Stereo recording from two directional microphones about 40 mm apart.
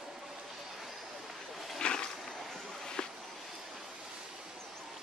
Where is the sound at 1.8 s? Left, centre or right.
Left.